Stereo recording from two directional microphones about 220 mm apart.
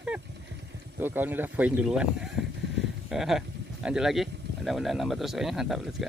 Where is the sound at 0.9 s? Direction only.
10° right (ahead or behind).